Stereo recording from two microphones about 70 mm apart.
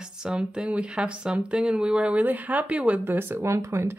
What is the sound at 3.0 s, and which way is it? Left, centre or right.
Speech, right.